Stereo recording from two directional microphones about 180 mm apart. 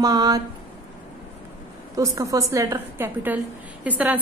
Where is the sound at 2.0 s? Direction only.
20° right (ahead or behind).